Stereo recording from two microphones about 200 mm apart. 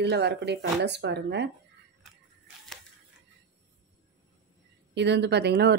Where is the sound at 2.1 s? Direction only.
Centre (ahead or behind).